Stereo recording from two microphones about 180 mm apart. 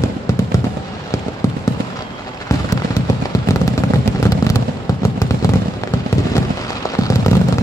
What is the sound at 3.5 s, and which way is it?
Fireworks, 20° left (ahead or behind).